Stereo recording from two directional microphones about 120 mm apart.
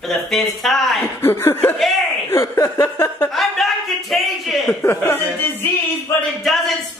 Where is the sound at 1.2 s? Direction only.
20° left (ahead or behind).